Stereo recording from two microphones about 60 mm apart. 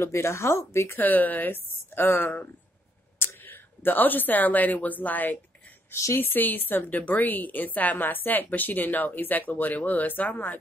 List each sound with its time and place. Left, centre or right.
0.0 s speech: left
0.9 s a woman's voice: left